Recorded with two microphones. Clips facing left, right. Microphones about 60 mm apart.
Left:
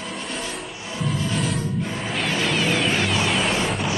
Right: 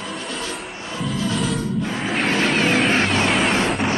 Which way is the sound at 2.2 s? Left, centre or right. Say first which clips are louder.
Right 3 dB; right.